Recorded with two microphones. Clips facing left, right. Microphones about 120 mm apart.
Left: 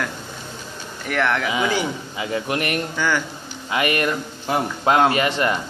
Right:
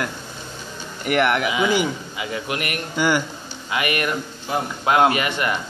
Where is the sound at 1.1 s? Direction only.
20° right (ahead or behind).